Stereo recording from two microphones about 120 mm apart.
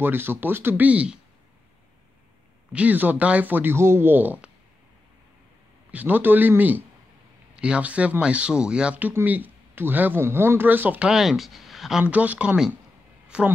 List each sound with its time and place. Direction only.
0.0 s speech: 15° right (ahead or behind)
2.7 s speech: 10° right (ahead or behind)
5.9 s speech: 15° right (ahead or behind)
11.1 s speech: centre (ahead or behind)
12.0 s speech: 10° right (ahead or behind)